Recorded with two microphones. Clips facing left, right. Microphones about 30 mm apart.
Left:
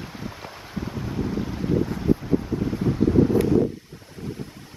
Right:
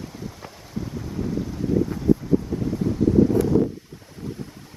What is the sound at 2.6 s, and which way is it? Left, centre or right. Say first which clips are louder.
Wind: even; left.